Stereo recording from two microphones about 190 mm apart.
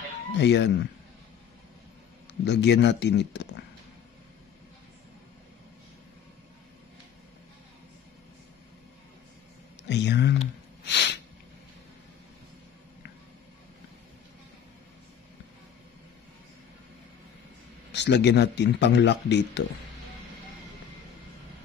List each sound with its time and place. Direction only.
0.4 s speech: 65° left (ahead or behind)
2.4 s speech: 65° left (ahead or behind)
9.8 s speech: 65° left (ahead or behind)
10.9 s a sound: 65° left (ahead or behind)
17.9 s speech: 65° left (ahead or behind)